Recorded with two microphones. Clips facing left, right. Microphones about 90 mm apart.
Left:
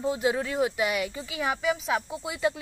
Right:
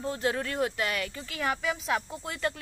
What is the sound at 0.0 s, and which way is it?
Speech, 10° left (ahead or behind).